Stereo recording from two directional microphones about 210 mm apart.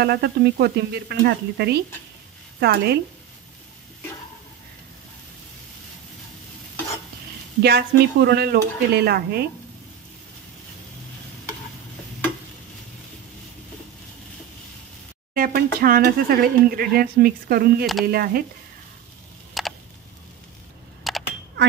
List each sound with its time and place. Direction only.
0.0 s speech: 50° right (ahead or behind)
7.6 s speech: 50° right (ahead or behind)
15.3 s speech: 45° right (ahead or behind)
19.6 s a sound: centre (ahead or behind)
21.0 s camera: centre (ahead or behind)